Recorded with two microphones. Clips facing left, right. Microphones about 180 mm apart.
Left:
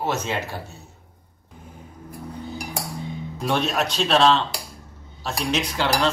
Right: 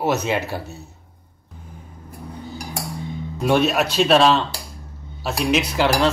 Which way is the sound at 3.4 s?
5° right (ahead or behind).